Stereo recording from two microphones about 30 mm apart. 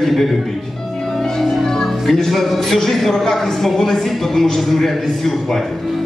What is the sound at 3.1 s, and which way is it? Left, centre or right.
A woman's voice, centre.